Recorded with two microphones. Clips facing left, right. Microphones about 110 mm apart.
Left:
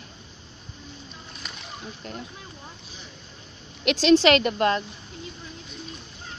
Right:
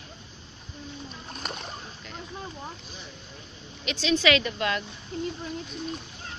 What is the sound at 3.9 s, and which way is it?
Speech, 75° left (ahead or behind).